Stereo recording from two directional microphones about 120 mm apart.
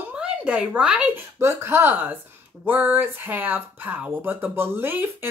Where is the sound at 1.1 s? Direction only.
20° right (ahead or behind).